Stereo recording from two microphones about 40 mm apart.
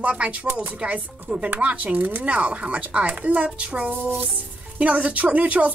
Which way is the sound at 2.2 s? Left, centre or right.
Right.